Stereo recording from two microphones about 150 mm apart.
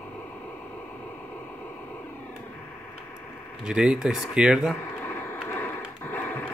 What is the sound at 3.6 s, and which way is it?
Speech, 5° right (ahead or behind).